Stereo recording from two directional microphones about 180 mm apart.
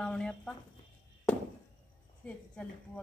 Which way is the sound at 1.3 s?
5° left (ahead or behind).